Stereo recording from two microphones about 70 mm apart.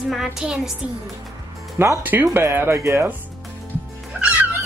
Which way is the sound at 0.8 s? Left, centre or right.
Centre.